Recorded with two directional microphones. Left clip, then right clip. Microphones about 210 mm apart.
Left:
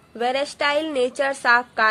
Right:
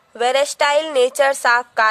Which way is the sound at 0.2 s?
45° right (ahead or behind).